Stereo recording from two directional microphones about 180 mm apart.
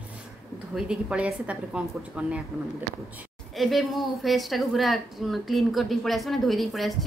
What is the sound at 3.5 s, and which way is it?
Speech, centre (ahead or behind).